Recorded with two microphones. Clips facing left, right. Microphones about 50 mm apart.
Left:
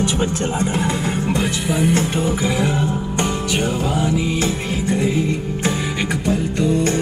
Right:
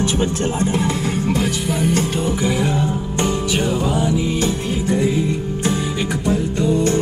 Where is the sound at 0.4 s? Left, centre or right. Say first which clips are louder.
Right 1 dB; left.